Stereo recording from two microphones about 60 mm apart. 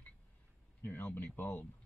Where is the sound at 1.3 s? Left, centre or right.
Left.